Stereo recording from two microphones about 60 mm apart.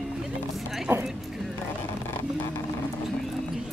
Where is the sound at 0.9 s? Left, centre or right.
Right.